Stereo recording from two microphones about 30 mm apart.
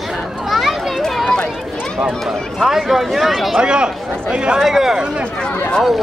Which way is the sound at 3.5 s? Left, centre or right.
Right.